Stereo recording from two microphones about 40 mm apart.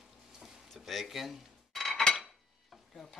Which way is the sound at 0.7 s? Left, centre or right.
Centre.